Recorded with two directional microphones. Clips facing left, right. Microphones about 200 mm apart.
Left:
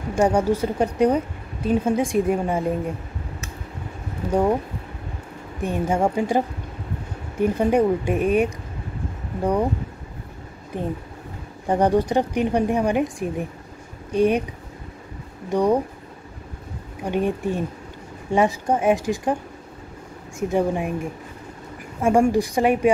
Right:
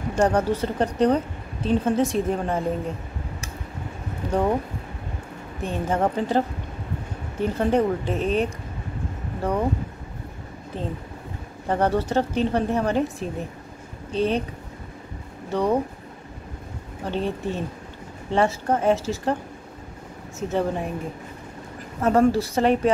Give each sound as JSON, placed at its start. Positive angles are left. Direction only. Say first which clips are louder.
{"t": 0.1, "sound": "a woman's voice", "louder": "left 2 dB", "side_deg": 10}
{"t": 4.3, "sound": "a woman's voice", "louder": "left 3 dB", "side_deg": 10}
{"t": 5.6, "sound": "a woman's voice", "louder": "left 2 dB", "side_deg": 10}
{"t": 10.7, "sound": "a woman's voice", "louder": "left 4 dB", "side_deg": 15}
{"t": 15.5, "sound": "a woman's voice", "louder": "left 3 dB", "side_deg": 15}
{"t": 17.0, "sound": "a woman's voice", "louder": "left 4 dB", "side_deg": 15}
{"t": 20.3, "sound": "a woman's voice", "louder": "left 3 dB", "side_deg": 15}
{"t": 22.0, "sound": "a woman's voice", "louder": "left 1 dB", "side_deg": 10}